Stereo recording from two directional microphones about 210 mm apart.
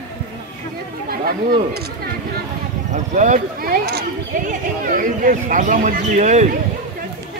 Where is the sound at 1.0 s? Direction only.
45° right (ahead or behind).